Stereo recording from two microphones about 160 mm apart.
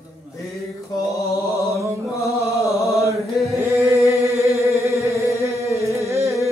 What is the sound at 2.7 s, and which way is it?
Chant, centre (ahead or behind).